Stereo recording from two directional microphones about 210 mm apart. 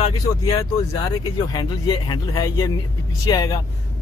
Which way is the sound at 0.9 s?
20° left (ahead or behind).